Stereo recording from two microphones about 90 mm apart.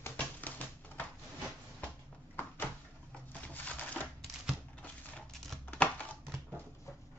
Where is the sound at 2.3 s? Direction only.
20° left (ahead or behind).